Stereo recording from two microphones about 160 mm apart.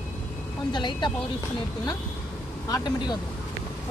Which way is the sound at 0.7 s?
30° left (ahead or behind).